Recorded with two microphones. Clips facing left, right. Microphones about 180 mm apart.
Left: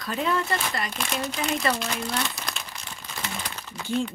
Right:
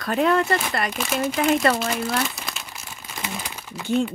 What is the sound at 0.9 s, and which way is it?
Speech, 5° right (ahead or behind).